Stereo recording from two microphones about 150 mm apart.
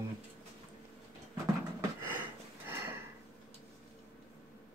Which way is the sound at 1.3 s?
15° right (ahead or behind).